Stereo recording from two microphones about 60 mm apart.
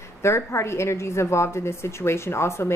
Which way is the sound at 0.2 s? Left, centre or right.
Left.